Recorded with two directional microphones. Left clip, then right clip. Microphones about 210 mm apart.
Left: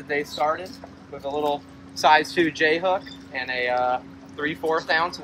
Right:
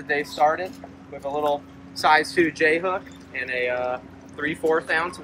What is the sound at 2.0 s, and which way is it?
Speech, 30° left (ahead or behind).